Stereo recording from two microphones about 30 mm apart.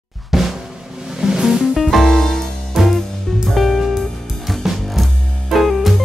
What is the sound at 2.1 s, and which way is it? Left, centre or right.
Music, centre.